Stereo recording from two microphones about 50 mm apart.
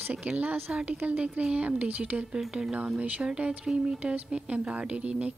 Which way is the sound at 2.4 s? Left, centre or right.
Centre.